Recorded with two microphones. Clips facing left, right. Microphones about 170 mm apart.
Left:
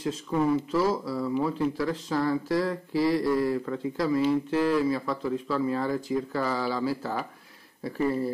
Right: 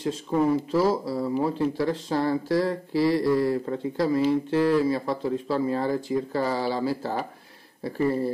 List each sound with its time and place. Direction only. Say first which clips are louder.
0.7 s speech: right 3 dB; 30° right (ahead or behind)